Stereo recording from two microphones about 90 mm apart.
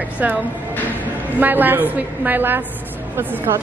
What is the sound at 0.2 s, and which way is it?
A woman's voice, 20° right (ahead or behind).